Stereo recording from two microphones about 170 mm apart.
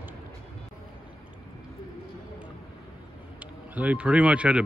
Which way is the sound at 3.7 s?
10° right (ahead or behind).